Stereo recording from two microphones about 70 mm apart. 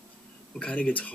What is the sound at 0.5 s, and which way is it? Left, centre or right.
Speech, centre.